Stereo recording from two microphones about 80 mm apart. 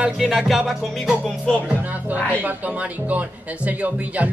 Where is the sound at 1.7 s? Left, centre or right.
Centre.